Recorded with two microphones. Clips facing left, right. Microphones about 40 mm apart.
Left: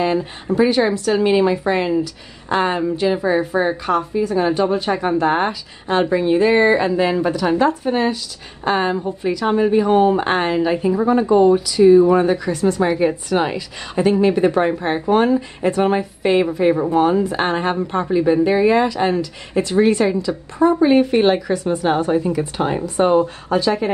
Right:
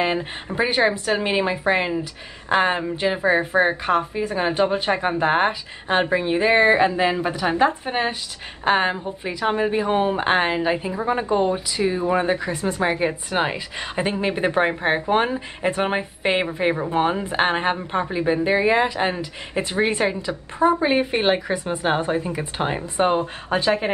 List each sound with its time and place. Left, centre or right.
0.0 s a woman's voice: right